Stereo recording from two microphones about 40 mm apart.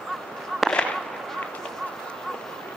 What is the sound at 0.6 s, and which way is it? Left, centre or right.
Fireworks, centre.